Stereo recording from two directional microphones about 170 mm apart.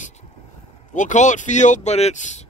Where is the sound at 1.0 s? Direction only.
45° left (ahead or behind).